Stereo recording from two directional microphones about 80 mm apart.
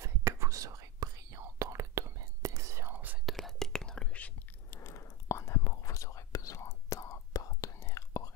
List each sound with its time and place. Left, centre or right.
0.0 s whispering: right
2.9 s whispering: right
3.3 s whispering: centre
4.6 s whispering: left